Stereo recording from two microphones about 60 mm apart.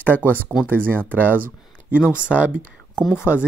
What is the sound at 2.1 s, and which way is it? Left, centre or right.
Speech, centre.